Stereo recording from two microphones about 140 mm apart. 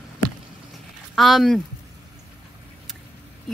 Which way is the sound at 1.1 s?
Centre (ahead or behind).